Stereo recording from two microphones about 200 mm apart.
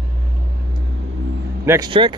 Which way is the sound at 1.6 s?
20° right (ahead or behind).